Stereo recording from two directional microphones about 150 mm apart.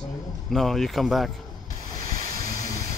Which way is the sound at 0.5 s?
Centre (ahead or behind).